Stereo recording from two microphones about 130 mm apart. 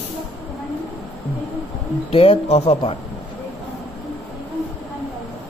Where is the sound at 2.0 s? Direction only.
50° left (ahead or behind).